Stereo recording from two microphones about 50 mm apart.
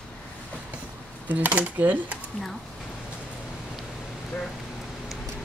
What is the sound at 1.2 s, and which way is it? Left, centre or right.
Speech, right.